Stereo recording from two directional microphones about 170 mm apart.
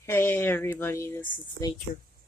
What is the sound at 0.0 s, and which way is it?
Speech, 15° left (ahead or behind).